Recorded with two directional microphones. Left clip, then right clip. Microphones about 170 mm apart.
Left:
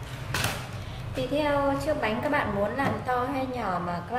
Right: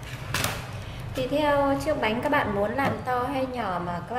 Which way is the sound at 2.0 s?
25° right (ahead or behind).